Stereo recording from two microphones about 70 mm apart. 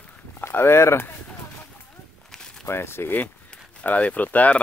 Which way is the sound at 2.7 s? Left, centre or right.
Left.